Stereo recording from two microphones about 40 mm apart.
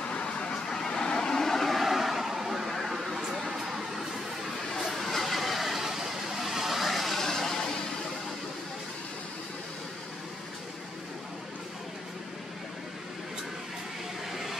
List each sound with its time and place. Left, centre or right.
0.1 s a sound: left
0.7 s vehicle: centre
4.7 s vehicle: centre
14.3 s vehicle: centre